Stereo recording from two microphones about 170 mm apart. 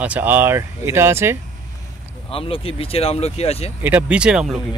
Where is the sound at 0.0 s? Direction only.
10° right (ahead or behind).